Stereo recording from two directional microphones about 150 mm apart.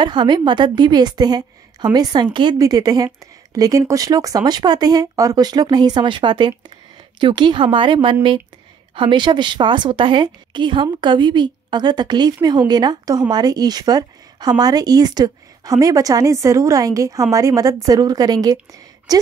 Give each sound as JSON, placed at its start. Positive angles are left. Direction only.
{"t": 0.0, "sound": "a woman's voice", "side_deg": -30}